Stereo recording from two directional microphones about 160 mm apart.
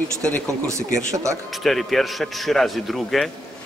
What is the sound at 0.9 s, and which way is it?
Speech, 20° right (ahead or behind).